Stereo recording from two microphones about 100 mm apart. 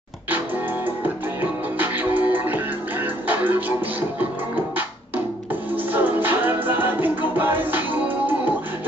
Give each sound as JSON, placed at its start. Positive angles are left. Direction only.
{"t": 1.0, "sound": "music", "side_deg": -20}